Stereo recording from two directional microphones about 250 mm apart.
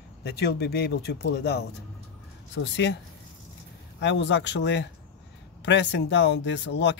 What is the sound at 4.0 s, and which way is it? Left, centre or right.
Speech, left.